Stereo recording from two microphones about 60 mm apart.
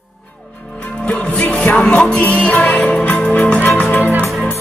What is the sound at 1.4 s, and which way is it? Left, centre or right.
Music, left.